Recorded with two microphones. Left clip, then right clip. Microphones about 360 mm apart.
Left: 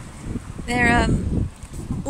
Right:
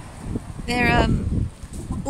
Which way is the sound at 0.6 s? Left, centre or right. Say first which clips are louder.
Left 1 dB; centre.